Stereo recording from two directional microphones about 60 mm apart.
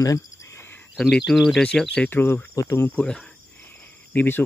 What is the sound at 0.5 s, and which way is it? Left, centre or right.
Cricket, left.